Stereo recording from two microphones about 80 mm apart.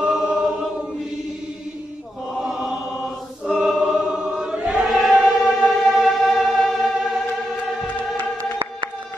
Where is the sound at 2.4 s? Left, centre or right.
Centre.